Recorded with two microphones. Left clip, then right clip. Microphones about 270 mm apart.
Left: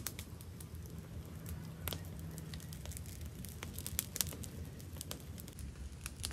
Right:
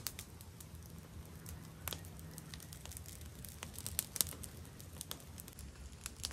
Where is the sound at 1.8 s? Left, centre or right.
Centre.